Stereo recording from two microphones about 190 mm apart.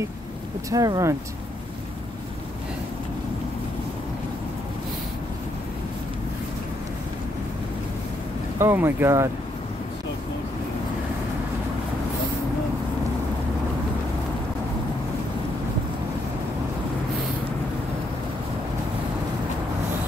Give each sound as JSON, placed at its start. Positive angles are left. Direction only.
{"t": 0.7, "sound": "speech", "side_deg": -20}
{"t": 8.5, "sound": "speech", "side_deg": -15}